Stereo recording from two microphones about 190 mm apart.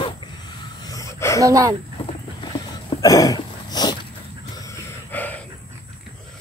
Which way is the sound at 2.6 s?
20° left (ahead or behind).